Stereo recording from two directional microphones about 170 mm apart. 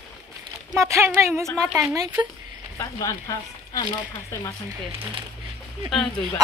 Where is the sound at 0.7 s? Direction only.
15° right (ahead or behind).